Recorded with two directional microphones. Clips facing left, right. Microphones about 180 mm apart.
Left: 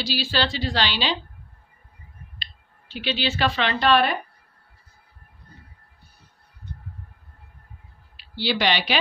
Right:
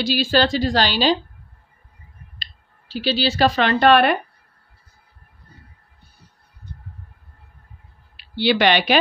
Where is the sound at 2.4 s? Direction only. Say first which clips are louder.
Even; 35° right (ahead or behind); by 4.2 s 60° right (ahead or behind).